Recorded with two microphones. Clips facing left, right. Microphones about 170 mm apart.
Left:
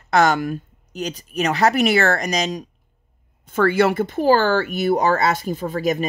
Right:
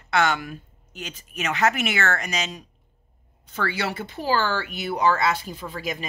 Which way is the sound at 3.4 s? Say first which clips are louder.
Left 11 dB; 50° left (ahead or behind).